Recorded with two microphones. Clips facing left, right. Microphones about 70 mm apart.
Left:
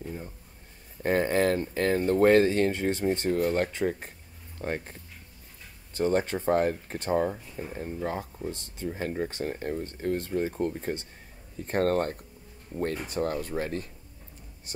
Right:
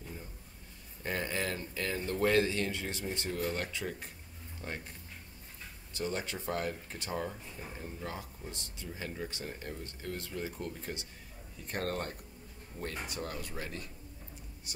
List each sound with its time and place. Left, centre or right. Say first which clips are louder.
0.0 s a sound: left 9 dB; left
1.0 s speech: left 11 dB; left
5.9 s speech: left 11 dB; left